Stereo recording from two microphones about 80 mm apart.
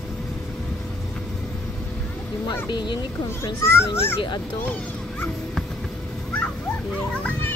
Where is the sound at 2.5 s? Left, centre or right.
Left.